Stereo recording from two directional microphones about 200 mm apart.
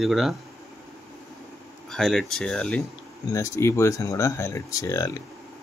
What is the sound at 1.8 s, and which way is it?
Speech, centre (ahead or behind).